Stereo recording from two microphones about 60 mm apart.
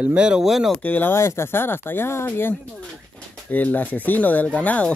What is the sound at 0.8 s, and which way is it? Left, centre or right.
Speech, left.